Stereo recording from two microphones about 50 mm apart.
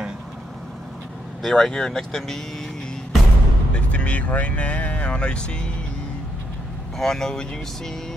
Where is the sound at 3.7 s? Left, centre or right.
Left.